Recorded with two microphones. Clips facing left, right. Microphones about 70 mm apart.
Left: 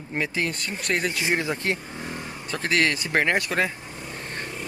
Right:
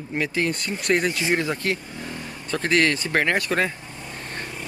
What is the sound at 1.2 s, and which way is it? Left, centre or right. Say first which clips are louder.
Speech: right 2 dB; centre.